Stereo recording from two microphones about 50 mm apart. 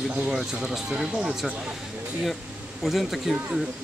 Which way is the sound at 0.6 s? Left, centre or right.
Centre.